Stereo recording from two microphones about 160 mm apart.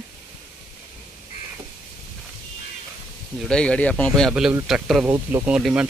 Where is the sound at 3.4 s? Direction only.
5° left (ahead or behind).